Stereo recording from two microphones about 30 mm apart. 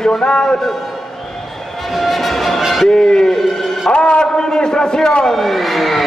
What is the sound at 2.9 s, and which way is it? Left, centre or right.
A man's voice, centre.